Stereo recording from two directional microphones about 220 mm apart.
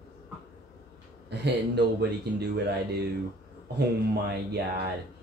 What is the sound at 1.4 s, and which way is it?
Speech, 50° right (ahead or behind).